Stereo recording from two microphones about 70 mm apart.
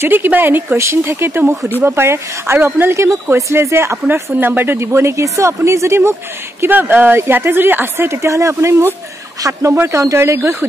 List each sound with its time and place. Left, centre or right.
0.0 s speech: right
6.6 s speech: right